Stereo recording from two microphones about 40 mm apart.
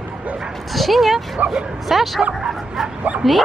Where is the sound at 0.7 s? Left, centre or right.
Centre.